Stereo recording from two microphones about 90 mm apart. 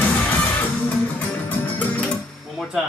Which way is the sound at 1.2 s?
20° left (ahead or behind).